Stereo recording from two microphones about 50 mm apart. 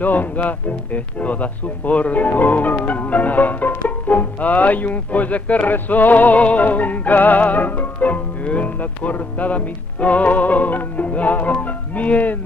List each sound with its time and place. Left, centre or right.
0.0 s music: left
11.6 s speech: left